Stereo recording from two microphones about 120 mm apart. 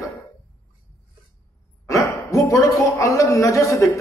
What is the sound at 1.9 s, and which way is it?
A man's voice, 25° left (ahead or behind).